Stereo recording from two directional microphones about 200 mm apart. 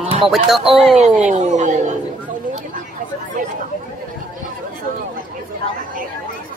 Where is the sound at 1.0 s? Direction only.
40° right (ahead or behind).